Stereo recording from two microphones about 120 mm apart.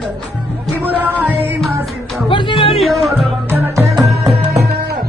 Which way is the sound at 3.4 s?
25° right (ahead or behind).